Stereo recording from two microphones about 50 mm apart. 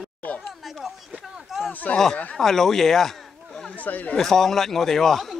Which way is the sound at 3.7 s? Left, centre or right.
Left.